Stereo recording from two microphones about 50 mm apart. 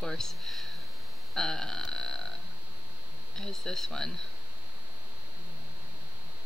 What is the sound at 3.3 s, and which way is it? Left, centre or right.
Speech, centre.